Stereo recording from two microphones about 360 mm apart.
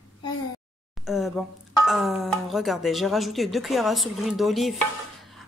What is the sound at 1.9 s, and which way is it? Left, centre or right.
Speech, centre.